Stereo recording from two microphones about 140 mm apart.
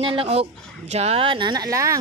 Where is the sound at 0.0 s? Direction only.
40° right (ahead or behind).